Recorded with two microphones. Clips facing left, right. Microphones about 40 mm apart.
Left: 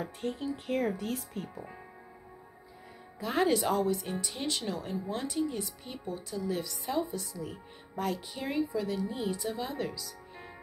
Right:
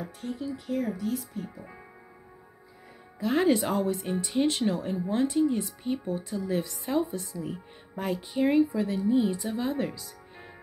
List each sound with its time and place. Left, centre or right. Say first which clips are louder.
0.0 s speech: even; left
1.5 s speech: left 1 dB; centre
3.2 s speech: right 4 dB; centre
3.5 s speech: right 1 dB; centre
5.9 s speech: right 13 dB; centre
6.3 s speech: right 2 dB; centre
9.0 s speech: right 8 dB; centre; by 10.1 s right